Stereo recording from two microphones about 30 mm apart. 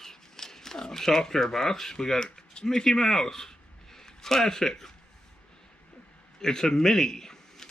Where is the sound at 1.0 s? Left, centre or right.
Centre; by 2.6 s left.